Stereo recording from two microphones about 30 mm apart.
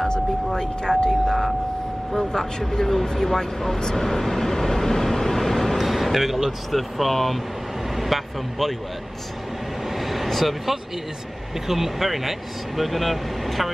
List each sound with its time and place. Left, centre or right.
0.6 s speech: left
1.2 s vehicle: centre
2.7 s speech: centre
5.8 s a sound: centre
6.2 s speech: centre
6.7 s speech: centre
9.9 s vehicle: centre
11.6 s speech: centre